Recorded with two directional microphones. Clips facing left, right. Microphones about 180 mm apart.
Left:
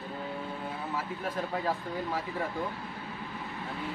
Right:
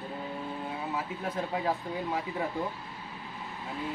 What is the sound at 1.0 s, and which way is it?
A man's voice, 15° right (ahead or behind).